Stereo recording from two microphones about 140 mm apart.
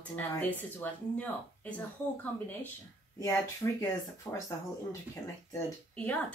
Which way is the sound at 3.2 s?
20° left (ahead or behind).